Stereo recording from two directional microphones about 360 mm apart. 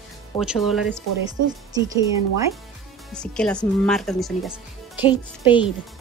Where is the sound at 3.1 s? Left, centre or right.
Centre.